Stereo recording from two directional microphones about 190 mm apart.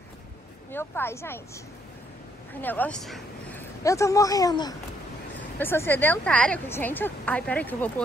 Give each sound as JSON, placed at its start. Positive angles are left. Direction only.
{"t": 0.7, "sound": "a woman's voice", "side_deg": 10}
{"t": 2.6, "sound": "a woman's voice", "side_deg": 10}